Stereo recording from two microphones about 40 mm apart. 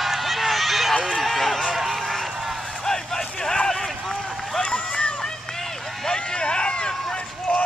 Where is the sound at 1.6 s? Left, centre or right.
Centre.